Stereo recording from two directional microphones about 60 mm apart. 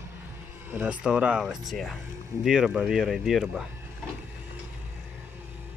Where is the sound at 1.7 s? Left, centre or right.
Centre.